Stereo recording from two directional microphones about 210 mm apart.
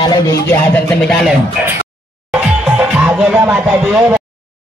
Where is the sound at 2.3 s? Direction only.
5° right (ahead or behind).